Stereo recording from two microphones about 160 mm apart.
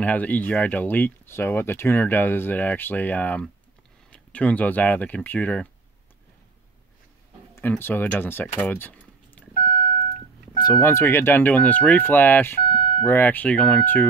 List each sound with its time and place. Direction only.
0.0 s speech: 10° left (ahead or behind)
7.6 s speech: 10° left (ahead or behind)
9.7 s beep: 25° left (ahead or behind)
10.6 s speech: 20° left (ahead or behind)